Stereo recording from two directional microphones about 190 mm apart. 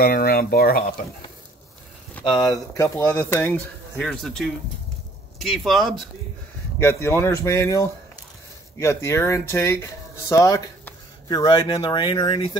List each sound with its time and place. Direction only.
0.0 s speech: 50° left (ahead or behind)
2.2 s speech: 20° left (ahead or behind); by 6.0 s centre (ahead or behind)
6.8 s speech: 15° left (ahead or behind)